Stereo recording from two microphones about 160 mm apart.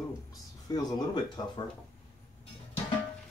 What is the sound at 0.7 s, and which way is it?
Speech, 25° left (ahead or behind).